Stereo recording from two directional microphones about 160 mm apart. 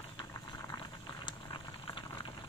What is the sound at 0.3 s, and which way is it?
Boiling, 25° left (ahead or behind).